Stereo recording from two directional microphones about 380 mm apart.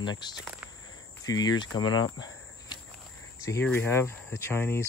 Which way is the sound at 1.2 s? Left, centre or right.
Centre.